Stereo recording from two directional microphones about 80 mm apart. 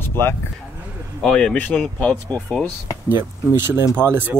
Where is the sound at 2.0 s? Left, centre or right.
Centre.